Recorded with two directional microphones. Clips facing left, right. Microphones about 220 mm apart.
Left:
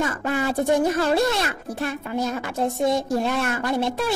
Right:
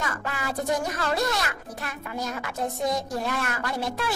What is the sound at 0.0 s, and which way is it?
Speech, 25° left (ahead or behind).